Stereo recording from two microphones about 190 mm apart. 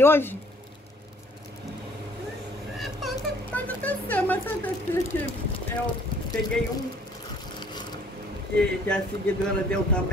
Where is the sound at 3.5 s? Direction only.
5° left (ahead or behind).